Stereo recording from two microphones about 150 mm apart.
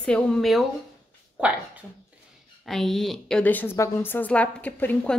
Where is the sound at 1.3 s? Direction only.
10° right (ahead or behind).